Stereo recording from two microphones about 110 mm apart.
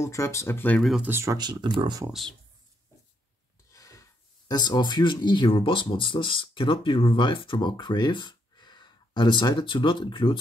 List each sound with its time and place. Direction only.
0.0 s speech: 25° left (ahead or behind)
0.7 s speech: centre (ahead or behind)
1.0 s speech: 20° right (ahead or behind)
1.3 s speech: 40° right (ahead or behind)
3.7 s speech: 30° left (ahead or behind); by 10.3 s 45° left (ahead or behind)